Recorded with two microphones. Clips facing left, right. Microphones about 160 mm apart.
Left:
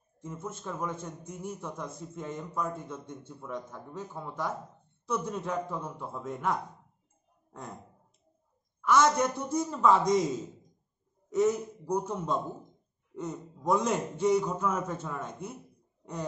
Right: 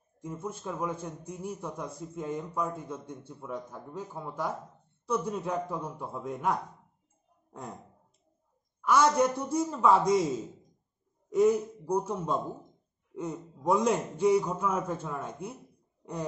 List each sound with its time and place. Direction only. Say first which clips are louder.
0.2 s a man's voice: right 2 dB; 10° right (ahead or behind)
8.8 s a man's voice: right 1 dB; 10° right (ahead or behind)
11.3 s a man's voice: right 3 dB; 10° right (ahead or behind)